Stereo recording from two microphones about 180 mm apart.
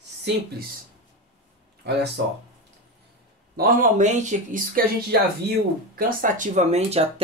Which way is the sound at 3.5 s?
50° right (ahead or behind).